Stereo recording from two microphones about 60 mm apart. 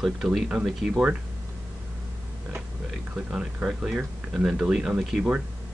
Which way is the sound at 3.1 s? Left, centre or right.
Centre.